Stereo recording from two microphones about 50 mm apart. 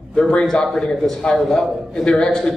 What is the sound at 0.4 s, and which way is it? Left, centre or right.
A man's voice, centre.